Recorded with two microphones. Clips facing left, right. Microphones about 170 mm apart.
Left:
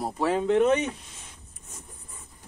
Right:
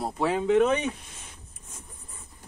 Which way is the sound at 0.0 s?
Centre (ahead or behind).